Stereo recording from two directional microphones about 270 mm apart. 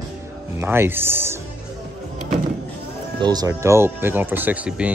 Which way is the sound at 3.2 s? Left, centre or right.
Centre.